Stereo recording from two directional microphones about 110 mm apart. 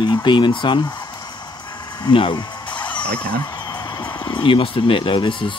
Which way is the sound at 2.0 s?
45° left (ahead or behind).